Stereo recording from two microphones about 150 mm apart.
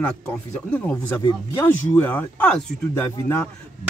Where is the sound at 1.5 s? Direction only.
15° left (ahead or behind).